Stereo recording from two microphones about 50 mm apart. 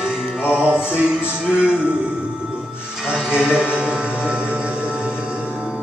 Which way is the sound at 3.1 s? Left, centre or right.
Centre.